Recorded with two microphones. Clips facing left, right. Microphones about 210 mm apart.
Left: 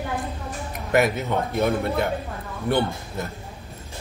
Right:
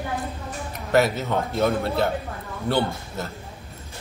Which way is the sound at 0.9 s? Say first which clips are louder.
Even; 15° left (ahead or behind).